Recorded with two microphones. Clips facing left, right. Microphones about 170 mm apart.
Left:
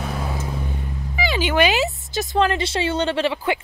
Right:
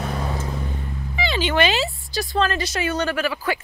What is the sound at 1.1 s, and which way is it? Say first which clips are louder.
Speech: left 1 dB; 10° left (ahead or behind).